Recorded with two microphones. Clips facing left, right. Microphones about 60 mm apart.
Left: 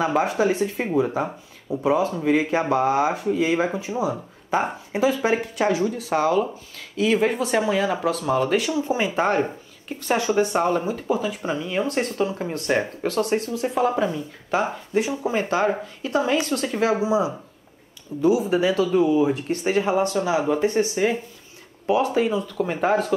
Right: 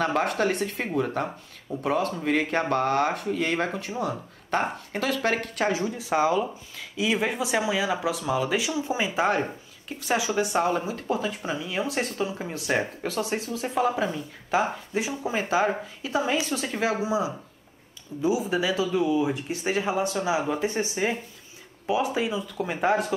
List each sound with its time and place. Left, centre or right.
0.0 s speech: centre
5.9 s speech: centre
7.0 s speech: centre
16.9 s speech: centre
18.3 s speech: left
18.9 s speech: centre
21.9 s speech: centre